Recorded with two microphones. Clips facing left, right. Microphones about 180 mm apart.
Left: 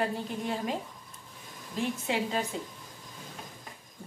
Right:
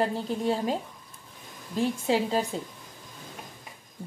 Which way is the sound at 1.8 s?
35° right (ahead or behind).